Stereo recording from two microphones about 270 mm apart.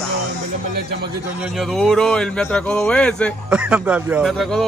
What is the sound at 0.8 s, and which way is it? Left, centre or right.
Speech, right.